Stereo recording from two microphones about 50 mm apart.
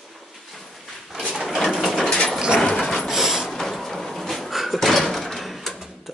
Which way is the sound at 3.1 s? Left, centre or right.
Centre.